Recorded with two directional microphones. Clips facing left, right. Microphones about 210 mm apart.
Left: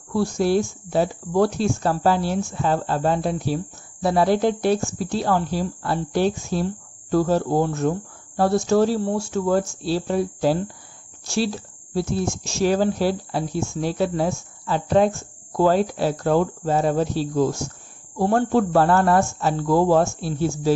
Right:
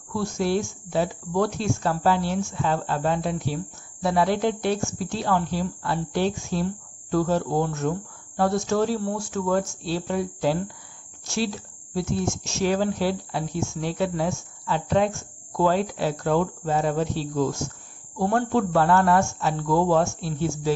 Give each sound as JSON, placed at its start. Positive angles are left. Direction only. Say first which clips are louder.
{"t": 0.1, "sound": "speech", "louder": "left 4 dB", "side_deg": 35}